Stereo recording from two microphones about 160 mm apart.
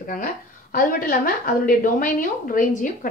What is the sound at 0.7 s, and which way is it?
A woman's voice, 60° left (ahead or behind).